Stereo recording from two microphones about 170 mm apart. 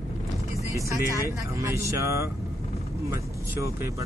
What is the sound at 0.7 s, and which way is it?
Speech, 15° right (ahead or behind).